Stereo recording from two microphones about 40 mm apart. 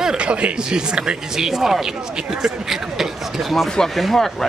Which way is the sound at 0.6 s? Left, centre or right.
Centre.